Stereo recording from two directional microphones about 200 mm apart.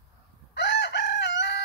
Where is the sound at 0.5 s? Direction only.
60° left (ahead or behind).